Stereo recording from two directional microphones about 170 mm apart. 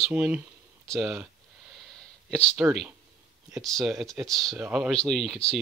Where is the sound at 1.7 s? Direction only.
5° left (ahead or behind).